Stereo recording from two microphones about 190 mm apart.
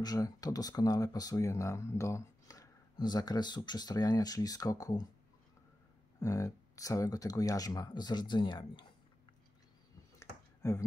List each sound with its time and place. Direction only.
0.0 s speech: 20° left (ahead or behind)
6.1 s speech: 15° left (ahead or behind)
10.6 s speech: 15° left (ahead or behind)